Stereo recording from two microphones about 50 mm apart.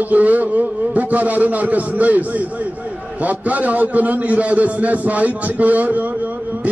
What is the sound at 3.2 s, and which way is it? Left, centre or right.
A man's voice, right.